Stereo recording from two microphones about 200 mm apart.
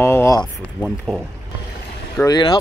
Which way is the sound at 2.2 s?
20° left (ahead or behind).